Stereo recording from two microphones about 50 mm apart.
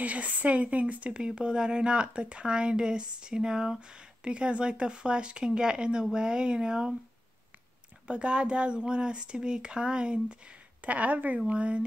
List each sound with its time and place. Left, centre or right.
0.0 s a woman's voice: right
8.1 s a woman's voice: right
10.8 s speech: right